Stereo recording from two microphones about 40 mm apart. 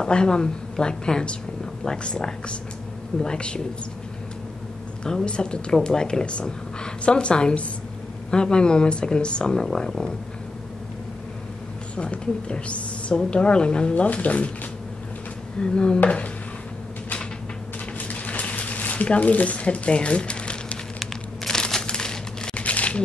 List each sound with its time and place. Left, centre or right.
0.0 s a woman's voice: centre
5.0 s a woman's voice: left
9.6 s speech: centre
11.9 s a woman's voice: left
14.0 s speech: left
15.6 s a woman's voice: left
18.0 s a sound: left
19.1 s speech: left
21.5 s crumpling: centre
22.6 s crumpling: left